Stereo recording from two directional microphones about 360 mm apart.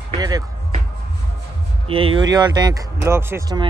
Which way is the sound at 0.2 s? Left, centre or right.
Centre.